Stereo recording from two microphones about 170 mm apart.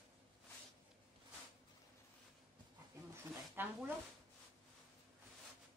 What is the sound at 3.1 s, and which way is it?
Zipper, 10° right (ahead or behind).